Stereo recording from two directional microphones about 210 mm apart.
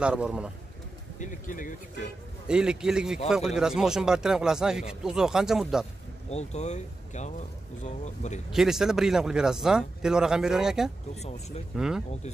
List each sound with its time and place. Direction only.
0.0 s speech: 5° right (ahead or behind)
1.2 s speech: 40° left (ahead or behind)
2.4 s speech: 5° right (ahead or behind)
6.3 s speech: 35° left (ahead or behind)
8.5 s speech: centre (ahead or behind)